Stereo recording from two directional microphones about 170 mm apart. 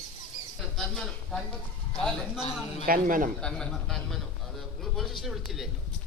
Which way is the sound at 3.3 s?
5° left (ahead or behind).